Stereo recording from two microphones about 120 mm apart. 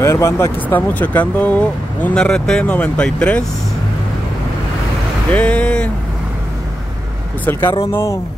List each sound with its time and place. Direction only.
0.0 s speech: 25° left (ahead or behind)
5.3 s speech: 10° left (ahead or behind)
7.9 s speech: 25° left (ahead or behind)